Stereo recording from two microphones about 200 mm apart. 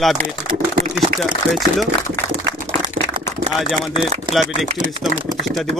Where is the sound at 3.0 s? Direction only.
50° right (ahead or behind).